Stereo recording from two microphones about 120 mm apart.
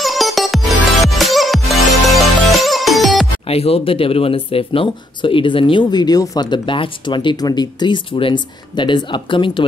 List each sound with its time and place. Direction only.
0.0 s music: centre (ahead or behind)
3.4 s speech: 55° left (ahead or behind)